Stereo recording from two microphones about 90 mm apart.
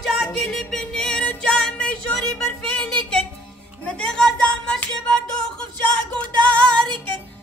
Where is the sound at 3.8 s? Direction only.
10° left (ahead or behind).